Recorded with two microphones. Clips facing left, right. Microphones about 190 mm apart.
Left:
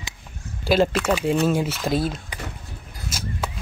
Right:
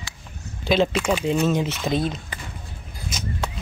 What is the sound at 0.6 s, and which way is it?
Speech, 5° left (ahead or behind).